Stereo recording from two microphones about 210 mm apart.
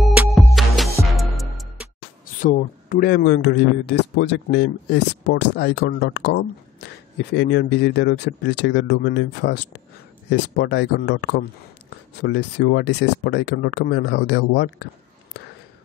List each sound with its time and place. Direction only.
0.1 s music: 5° right (ahead or behind)
2.4 s speech: 40° left (ahead or behind)